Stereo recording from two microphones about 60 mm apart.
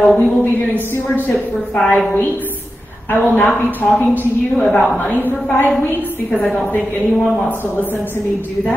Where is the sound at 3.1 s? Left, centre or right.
Left.